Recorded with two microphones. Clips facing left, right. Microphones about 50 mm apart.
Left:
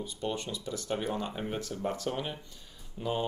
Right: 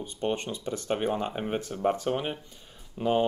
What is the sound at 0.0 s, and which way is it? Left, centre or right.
Speech, right.